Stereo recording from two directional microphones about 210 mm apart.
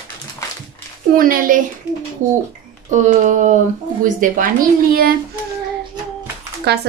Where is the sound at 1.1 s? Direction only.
40° right (ahead or behind).